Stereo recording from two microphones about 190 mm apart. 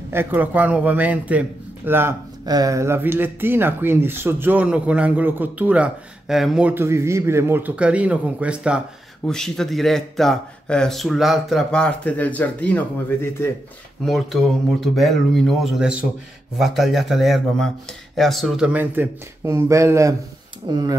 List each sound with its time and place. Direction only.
0.1 s speech: 10° right (ahead or behind); by 13.5 s 10° left (ahead or behind)
14.0 s speech: centre (ahead or behind); by 20.9 s 20° right (ahead or behind)